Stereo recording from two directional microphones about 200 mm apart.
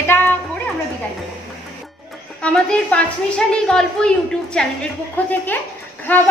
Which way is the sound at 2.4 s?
5° left (ahead or behind).